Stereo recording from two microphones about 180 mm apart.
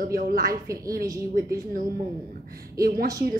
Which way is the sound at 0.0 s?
50° right (ahead or behind).